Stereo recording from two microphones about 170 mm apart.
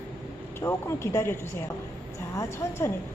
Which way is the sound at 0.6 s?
15° left (ahead or behind).